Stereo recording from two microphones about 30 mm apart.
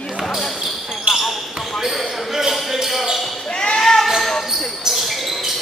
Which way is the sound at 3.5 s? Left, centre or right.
Left.